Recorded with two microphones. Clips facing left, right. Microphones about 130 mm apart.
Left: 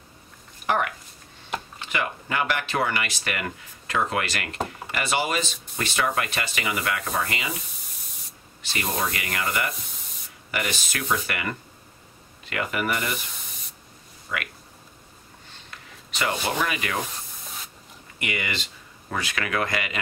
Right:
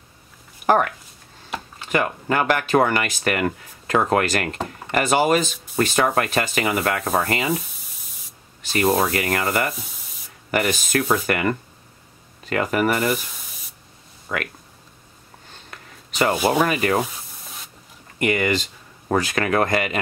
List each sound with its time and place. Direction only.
0.7 s speech: 40° right (ahead or behind)
1.9 s speech: 45° right (ahead or behind)
7.7 s spray: centre (ahead or behind)
8.7 s speech: 40° right (ahead or behind)
14.3 s speech: 45° right (ahead or behind)
15.7 s a sound: 45° right (ahead or behind)
16.5 s speech: 40° right (ahead or behind)
17.1 s sanding: centre (ahead or behind)
18.2 s speech: 45° right (ahead or behind)